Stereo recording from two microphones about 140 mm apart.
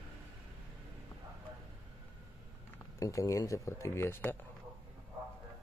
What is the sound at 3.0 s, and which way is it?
Speech, 25° left (ahead or behind).